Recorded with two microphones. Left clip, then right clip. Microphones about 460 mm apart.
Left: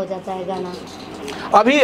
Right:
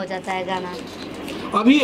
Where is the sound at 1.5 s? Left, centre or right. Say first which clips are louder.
Left 4 dB; left.